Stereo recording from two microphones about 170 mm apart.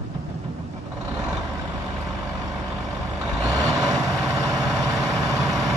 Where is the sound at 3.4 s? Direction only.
20° right (ahead or behind).